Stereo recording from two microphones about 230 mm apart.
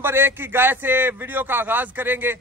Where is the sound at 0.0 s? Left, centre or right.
Centre.